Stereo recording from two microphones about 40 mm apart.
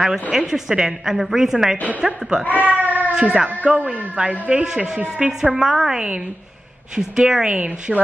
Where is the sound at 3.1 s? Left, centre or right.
Right.